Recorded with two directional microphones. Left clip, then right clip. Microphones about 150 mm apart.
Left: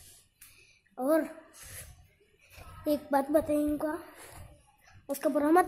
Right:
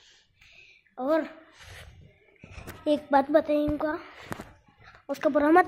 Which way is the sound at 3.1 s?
5° right (ahead or behind).